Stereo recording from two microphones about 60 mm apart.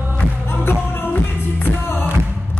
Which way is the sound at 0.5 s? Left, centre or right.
Left.